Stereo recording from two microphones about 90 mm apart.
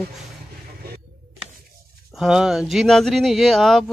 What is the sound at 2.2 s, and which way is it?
Speech, 5° right (ahead or behind).